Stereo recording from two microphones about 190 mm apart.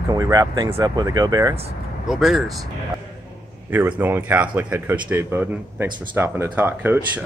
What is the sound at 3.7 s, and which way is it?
Speech, 10° right (ahead or behind).